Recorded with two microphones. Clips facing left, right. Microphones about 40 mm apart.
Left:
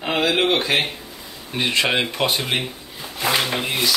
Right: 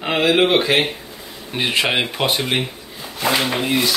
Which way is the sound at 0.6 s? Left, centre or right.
Right.